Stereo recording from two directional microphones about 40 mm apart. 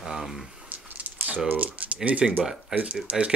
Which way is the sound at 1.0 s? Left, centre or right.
Right.